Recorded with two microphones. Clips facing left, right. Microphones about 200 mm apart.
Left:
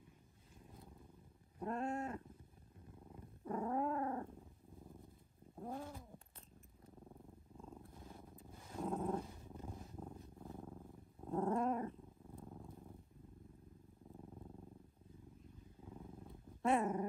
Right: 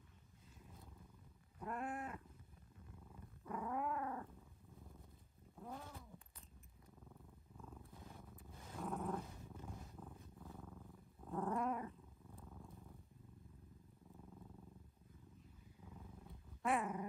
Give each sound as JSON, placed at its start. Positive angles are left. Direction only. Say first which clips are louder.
{"t": 1.6, "sound": "cat", "louder": "left 5 dB", "side_deg": 30}
{"t": 3.1, "sound": "purr", "louder": "left 5 dB", "side_deg": 35}
{"t": 5.6, "sound": "cat", "louder": "left 5 dB", "side_deg": 35}
{"t": 7.1, "sound": "purr", "louder": "left 5 dB", "side_deg": 30}
{"t": 11.2, "sound": "dog", "louder": "left 4 dB", "side_deg": 30}
{"t": 16.6, "sound": "dog", "louder": "left 4 dB", "side_deg": 30}